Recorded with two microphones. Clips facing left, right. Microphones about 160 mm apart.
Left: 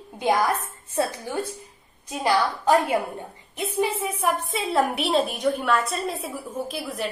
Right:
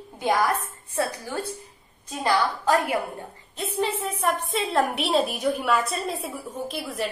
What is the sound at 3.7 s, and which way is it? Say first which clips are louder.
A woman's voice: left 2 dB; 10° left (ahead or behind).